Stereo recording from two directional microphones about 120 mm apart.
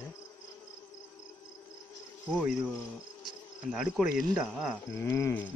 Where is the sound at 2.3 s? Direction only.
5° right (ahead or behind).